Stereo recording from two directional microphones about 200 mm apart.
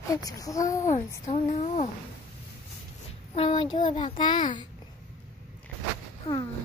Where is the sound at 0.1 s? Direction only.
15° left (ahead or behind).